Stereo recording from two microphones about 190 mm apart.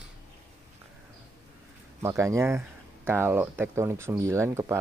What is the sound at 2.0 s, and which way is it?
Speech, 15° right (ahead or behind).